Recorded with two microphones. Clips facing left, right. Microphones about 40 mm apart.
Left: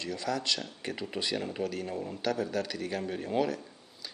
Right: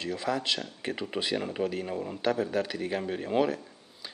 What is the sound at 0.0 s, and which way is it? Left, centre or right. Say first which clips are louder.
A man's voice: right 3 dB; centre.